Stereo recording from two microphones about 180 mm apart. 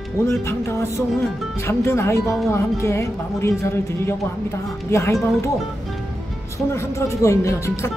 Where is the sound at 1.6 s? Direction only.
15° left (ahead or behind).